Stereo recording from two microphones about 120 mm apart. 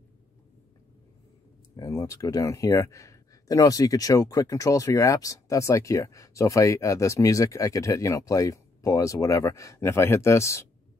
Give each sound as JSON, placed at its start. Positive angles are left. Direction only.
{"t": 1.8, "sound": "speech", "side_deg": 25}